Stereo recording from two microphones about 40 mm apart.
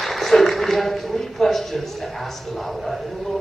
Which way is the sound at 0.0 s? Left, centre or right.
Centre.